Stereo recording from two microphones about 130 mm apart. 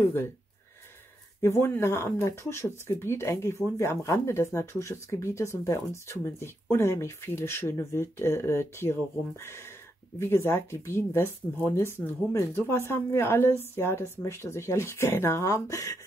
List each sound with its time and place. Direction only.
1.4 s speech: 20° left (ahead or behind)